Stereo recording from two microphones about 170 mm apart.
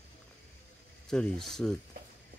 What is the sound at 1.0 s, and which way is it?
Speech, 5° left (ahead or behind).